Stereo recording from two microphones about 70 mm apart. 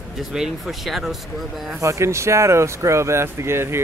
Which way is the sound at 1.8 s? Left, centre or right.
Right.